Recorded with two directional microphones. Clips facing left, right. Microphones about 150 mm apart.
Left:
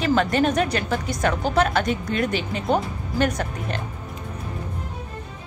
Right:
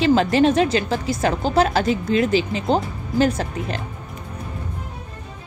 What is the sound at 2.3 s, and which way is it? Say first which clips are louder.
Speech: right 6 dB; 90° right.